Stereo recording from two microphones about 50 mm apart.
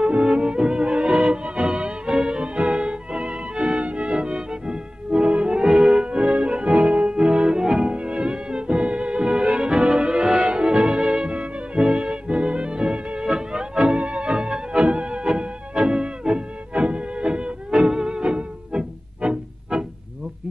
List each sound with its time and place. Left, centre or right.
0.0 s music: right